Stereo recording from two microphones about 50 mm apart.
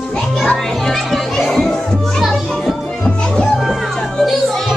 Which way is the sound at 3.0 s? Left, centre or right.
Left.